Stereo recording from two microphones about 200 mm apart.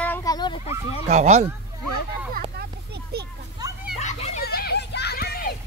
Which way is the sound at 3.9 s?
35° left (ahead or behind).